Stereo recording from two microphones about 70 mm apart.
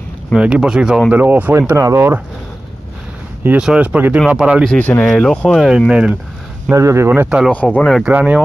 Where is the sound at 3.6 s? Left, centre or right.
Centre.